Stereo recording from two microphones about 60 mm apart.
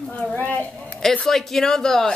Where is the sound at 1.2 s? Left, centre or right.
Centre.